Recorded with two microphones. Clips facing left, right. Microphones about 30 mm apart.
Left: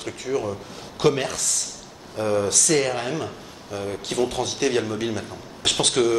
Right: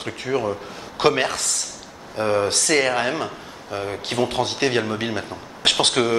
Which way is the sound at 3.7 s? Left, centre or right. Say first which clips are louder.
Right 2 dB; right.